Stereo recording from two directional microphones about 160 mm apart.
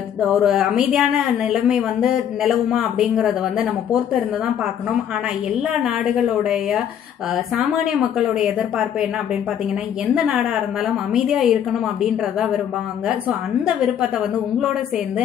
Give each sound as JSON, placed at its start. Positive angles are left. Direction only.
{"t": 0.2, "sound": "speech", "side_deg": 0}
{"t": 5.7, "sound": "speech", "side_deg": -5}
{"t": 10.0, "sound": "speech", "side_deg": -5}
{"t": 13.7, "sound": "speech", "side_deg": -5}